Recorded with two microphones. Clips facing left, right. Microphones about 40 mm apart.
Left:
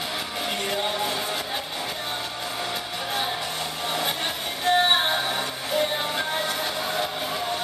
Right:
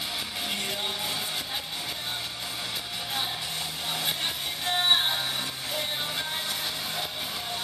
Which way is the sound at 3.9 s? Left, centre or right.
Centre.